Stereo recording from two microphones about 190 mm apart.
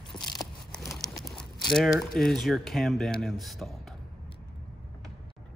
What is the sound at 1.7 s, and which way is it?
A man's voice, centre (ahead or behind).